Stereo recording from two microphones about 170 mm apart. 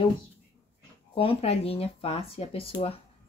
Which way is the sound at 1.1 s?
35° left (ahead or behind).